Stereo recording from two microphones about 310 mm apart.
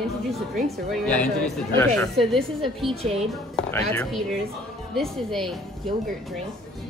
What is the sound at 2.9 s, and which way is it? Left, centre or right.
Speech, centre.